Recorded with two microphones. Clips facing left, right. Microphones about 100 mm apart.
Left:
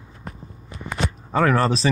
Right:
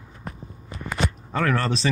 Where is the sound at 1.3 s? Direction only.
30° left (ahead or behind).